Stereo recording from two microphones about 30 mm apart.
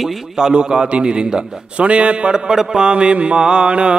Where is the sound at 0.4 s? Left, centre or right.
Right.